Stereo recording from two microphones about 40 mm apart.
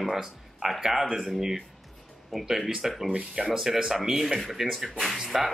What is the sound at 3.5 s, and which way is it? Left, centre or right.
Speech, centre.